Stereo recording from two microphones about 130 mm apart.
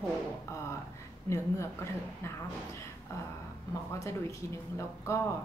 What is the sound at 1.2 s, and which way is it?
A woman's voice, 20° left (ahead or behind).